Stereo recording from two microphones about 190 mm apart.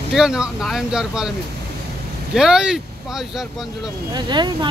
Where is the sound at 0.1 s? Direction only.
5° right (ahead or behind).